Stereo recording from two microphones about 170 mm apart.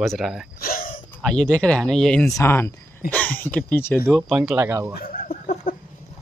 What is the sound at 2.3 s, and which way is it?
Speech, 15° left (ahead or behind).